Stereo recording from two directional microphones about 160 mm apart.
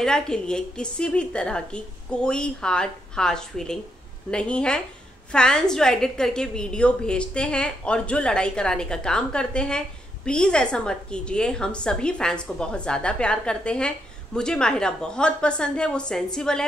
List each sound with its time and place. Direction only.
0.0 s a woman's voice: 5° left (ahead or behind)